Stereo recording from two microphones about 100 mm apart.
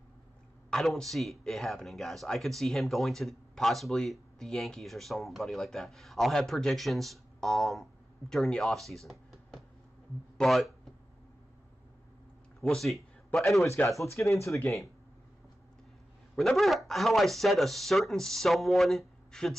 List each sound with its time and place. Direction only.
0.7 s speech: 5° left (ahead or behind)
12.5 s speech: centre (ahead or behind)
14.0 s speech: 30° left (ahead or behind)
16.3 s speech: centre (ahead or behind)